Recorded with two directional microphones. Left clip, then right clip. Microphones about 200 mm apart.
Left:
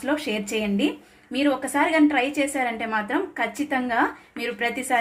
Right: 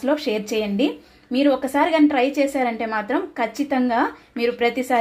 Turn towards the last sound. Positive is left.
turn(degrees=-45)  # may be behind; listen again after turning